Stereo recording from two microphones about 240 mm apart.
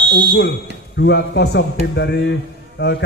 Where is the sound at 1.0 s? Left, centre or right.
Left.